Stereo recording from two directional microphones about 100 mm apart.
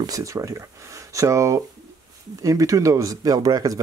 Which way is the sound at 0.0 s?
35° right (ahead or behind).